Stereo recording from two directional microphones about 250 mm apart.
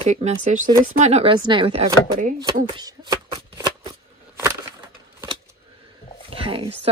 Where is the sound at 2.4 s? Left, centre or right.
Centre.